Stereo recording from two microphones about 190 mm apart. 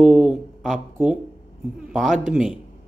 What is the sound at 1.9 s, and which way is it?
Speech, centre (ahead or behind).